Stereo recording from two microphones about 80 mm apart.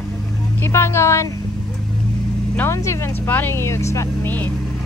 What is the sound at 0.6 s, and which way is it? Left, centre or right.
Speech, left.